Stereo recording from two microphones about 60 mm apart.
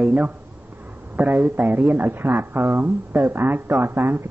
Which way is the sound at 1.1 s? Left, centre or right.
Right.